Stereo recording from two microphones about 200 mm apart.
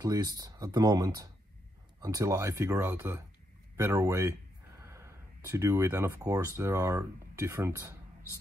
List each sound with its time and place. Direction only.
0.0 s speech: 20° right (ahead or behind)